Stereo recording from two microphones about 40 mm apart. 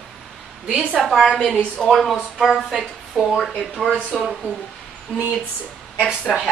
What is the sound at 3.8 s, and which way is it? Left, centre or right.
Speech, centre.